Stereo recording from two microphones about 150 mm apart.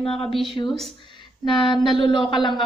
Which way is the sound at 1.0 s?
30° left (ahead or behind).